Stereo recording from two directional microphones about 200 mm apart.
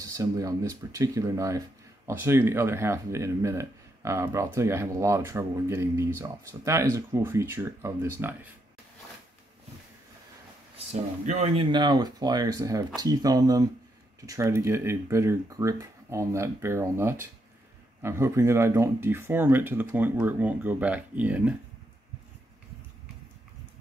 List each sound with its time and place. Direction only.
0.0 s speech: 15° right (ahead or behind)
10.8 s speech: 35° right (ahead or behind)
11.7 s speech: 20° right (ahead or behind)